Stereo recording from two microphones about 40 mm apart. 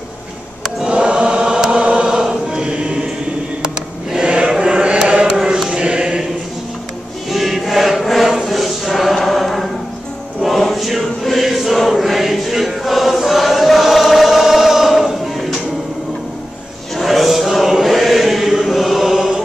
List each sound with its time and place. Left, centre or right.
0.8 s choir: right
2.0 s music: centre
3.6 s a sound: centre
4.6 s chant: right
5.0 s a sound: right
5.7 s choir: right
7.2 s chant: centre
10.4 s choir: centre
16.9 s chant: centre